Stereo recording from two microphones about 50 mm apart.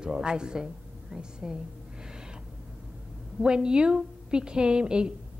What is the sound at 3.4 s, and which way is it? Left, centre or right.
A man's voice, centre.